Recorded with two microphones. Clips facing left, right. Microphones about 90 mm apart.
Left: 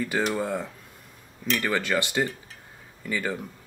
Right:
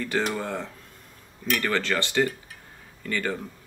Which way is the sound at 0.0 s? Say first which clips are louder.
Left 1 dB; 10° left (ahead or behind).